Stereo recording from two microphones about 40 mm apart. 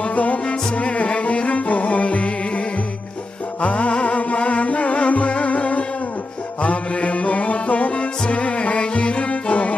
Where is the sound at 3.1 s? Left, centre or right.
Left.